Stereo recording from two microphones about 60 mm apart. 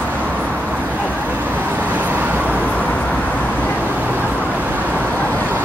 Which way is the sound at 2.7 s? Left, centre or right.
Left.